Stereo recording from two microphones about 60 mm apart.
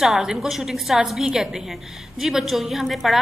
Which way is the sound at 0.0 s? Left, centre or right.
Centre.